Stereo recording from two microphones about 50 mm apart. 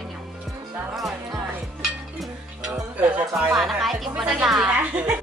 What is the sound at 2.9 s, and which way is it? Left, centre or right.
Music, right.